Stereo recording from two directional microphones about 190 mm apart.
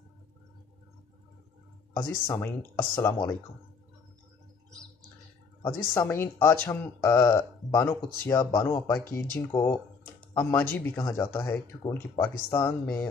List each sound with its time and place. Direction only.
2.2 s speech: 15° left (ahead or behind)
5.6 s speech: 15° left (ahead or behind)